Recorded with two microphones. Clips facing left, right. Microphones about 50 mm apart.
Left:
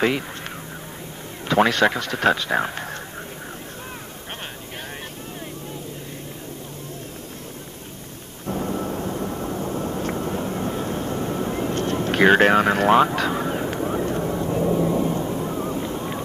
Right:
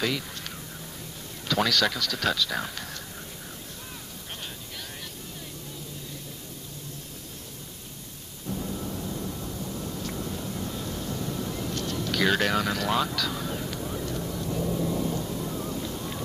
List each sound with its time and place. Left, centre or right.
1.5 s a man's voice: left
8.5 s thunder: left